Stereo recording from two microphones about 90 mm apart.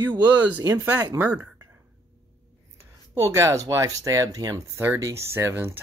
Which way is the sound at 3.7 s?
35° right (ahead or behind).